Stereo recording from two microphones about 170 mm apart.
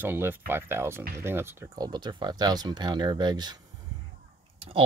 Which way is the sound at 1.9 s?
25° right (ahead or behind).